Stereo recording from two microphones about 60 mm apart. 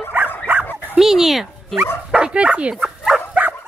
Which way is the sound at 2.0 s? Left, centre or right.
Centre.